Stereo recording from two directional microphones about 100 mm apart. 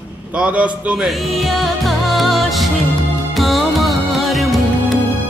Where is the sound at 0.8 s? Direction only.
5° right (ahead or behind).